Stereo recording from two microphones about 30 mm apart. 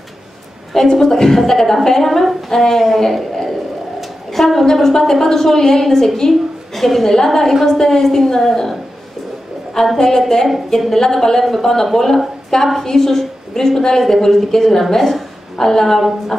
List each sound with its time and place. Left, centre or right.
0.7 s a woman's voice: centre
2.5 s a woman's voice: centre
2.8 s speech: centre
4.3 s a sound: centre
5.1 s a woman's voice: centre
9.9 s a woman's voice: centre
15.0 s a woman's voice: centre
15.5 s a woman's voice: centre